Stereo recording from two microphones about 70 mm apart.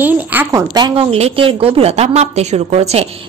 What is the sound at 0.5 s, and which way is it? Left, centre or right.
Speech, right.